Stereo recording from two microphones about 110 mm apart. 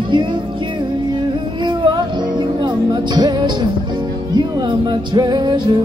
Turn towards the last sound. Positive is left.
turn(degrees=-45)  # may be behind; listen again after turning